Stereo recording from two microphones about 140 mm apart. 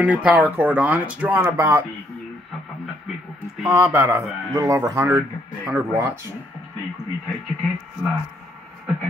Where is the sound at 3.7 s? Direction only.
20° right (ahead or behind).